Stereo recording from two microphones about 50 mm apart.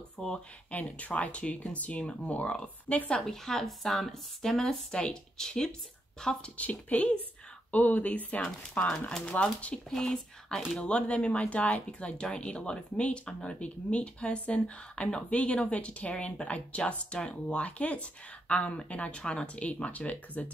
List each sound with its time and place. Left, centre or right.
0.2 s speech: centre
0.9 s speech: left
3.1 s speech: centre
6.5 s speech: left
9.1 s speech: centre
9.8 s speech: centre
10.8 s speech: left